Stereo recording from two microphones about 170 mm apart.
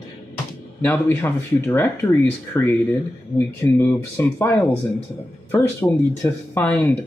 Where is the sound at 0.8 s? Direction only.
15° left (ahead or behind).